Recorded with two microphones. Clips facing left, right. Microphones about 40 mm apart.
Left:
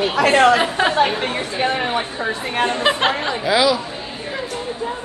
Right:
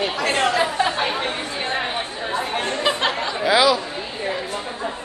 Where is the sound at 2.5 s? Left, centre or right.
Left.